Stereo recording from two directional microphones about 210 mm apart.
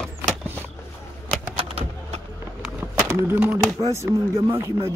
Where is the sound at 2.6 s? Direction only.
10° right (ahead or behind).